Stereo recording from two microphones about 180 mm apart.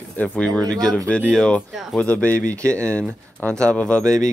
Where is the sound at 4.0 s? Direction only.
15° right (ahead or behind).